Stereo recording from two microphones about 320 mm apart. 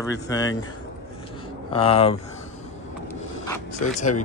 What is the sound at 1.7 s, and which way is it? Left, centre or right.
Speech, centre.